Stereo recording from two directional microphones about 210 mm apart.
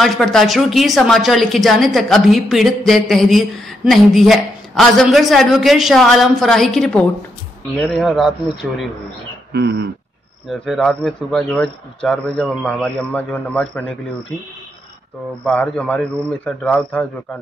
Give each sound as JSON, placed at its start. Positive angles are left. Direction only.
{"t": 0.0, "sound": "a woman's voice", "side_deg": 0}
{"t": 9.5, "sound": "throat clearing", "side_deg": -50}
{"t": 10.5, "sound": "a woman's voice", "side_deg": 0}
{"t": 15.4, "sound": "a woman's voice", "side_deg": 5}